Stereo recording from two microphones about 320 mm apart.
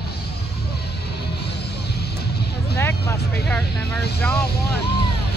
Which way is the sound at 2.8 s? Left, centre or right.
Centre.